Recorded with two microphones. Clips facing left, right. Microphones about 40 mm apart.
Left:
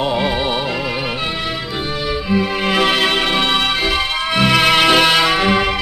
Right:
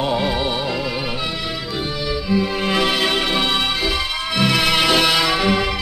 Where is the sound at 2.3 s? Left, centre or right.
Left.